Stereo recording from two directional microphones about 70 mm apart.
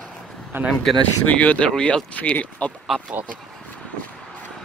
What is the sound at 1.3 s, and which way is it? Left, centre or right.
Speech, centre.